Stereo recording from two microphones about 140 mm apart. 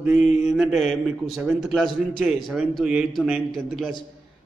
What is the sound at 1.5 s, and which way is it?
A man's voice, centre (ahead or behind).